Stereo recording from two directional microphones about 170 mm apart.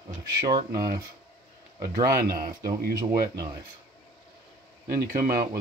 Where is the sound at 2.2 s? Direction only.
55° right (ahead or behind).